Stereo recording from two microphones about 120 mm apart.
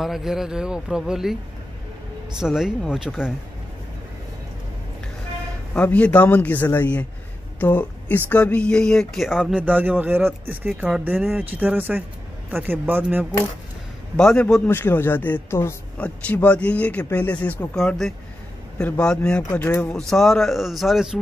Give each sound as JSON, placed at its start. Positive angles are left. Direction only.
{"t": 0.0, "sound": "speech", "side_deg": -5}
{"t": 2.3, "sound": "speech", "side_deg": -5}
{"t": 5.8, "sound": "speech", "side_deg": 10}
{"t": 10.7, "sound": "a man's voice", "side_deg": -5}
{"t": 14.1, "sound": "speech", "side_deg": 5}
{"t": 14.7, "sound": "speech", "side_deg": 20}
{"t": 19.9, "sound": "speech", "side_deg": 5}